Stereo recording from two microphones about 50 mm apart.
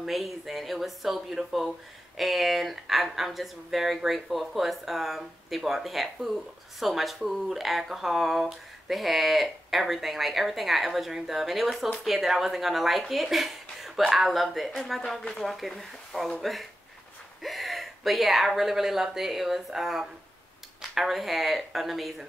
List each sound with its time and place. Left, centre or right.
0.0 s a woman's voice: centre